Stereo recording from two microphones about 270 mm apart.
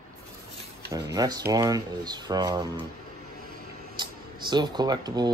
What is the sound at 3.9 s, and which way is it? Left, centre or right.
Speech, centre.